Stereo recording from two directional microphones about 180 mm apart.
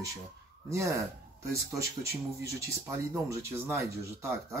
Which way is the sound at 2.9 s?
15° right (ahead or behind).